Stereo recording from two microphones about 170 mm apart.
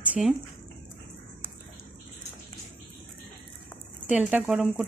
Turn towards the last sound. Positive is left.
turn(degrees=-5)  # may be behind; listen again after turning